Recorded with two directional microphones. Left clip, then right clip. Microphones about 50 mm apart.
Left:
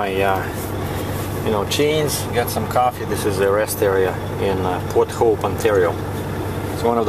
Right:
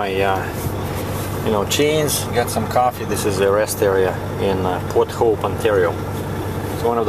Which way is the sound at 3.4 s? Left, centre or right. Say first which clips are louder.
Right 1 dB; centre.